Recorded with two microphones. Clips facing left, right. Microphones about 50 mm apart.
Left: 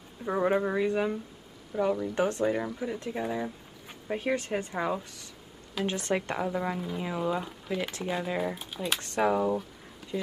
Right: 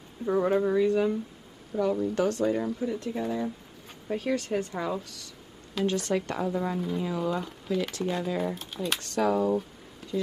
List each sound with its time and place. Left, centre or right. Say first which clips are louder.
0.2 s speech: right 2 dB; left
9.0 s speech: right 1 dB; left